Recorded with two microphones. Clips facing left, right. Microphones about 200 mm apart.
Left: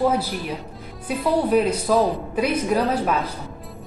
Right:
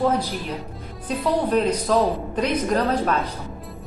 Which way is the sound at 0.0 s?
10° left (ahead or behind).